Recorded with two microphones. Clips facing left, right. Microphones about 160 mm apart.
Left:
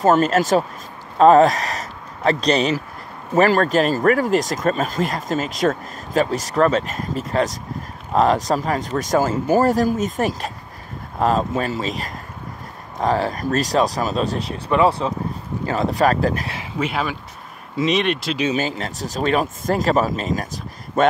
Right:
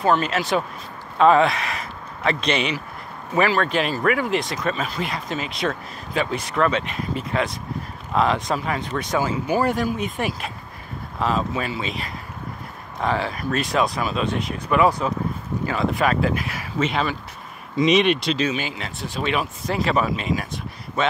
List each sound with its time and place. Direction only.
0.0 s speech: 45° left (ahead or behind)
16.7 s speech: 10° left (ahead or behind)
18.5 s speech: 40° left (ahead or behind)